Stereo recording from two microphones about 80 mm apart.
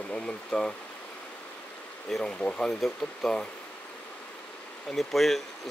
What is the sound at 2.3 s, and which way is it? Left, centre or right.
Speech, centre.